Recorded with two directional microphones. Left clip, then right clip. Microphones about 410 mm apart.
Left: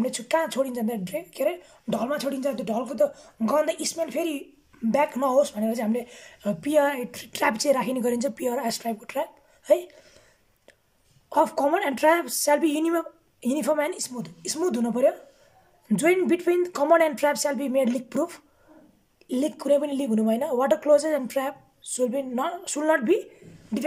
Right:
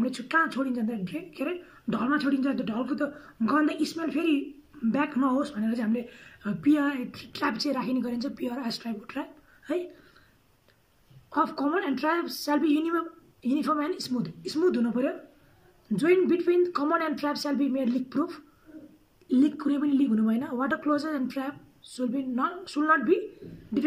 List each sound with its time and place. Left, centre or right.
0.0 s speech: centre
11.2 s speech: centre
17.2 s speech: left
17.5 s speech: centre